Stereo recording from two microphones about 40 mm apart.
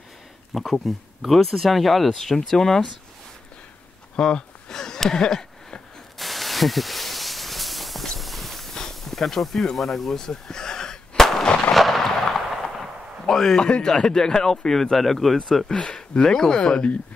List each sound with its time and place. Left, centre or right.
0.5 s speech: centre
4.2 s a sound: centre
6.1 s a sound: centre
8.2 s insect: centre
9.8 s a sound: centre
11.7 s artillery fire: centre
13.3 s speech: centre
13.6 s speech: left
15.7 s speech: left